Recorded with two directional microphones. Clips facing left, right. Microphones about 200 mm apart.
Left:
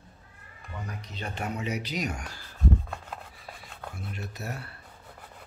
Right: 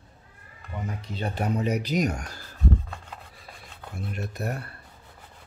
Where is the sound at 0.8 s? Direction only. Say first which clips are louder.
Right 7 dB; 30° right (ahead or behind).